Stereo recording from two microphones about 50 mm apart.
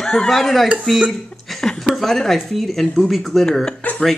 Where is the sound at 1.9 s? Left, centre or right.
Centre.